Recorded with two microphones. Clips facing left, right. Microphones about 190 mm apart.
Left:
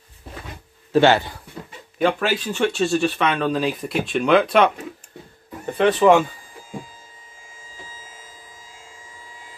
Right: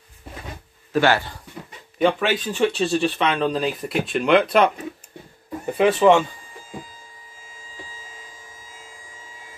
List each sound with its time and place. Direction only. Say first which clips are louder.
0.9 s a man's voice: left 4 dB; 25° left (ahead or behind)
2.0 s speech: right 1 dB; centre (ahead or behind)